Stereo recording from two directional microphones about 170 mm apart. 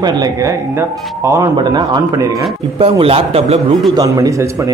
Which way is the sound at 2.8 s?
35° right (ahead or behind).